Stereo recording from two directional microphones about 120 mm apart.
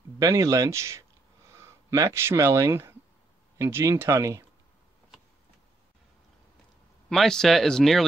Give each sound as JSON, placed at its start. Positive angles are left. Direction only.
{"t": 0.2, "sound": "speech", "side_deg": -30}
{"t": 7.1, "sound": "speech", "side_deg": 5}